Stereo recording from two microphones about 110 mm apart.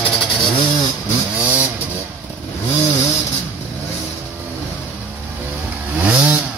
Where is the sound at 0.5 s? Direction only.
45° left (ahead or behind).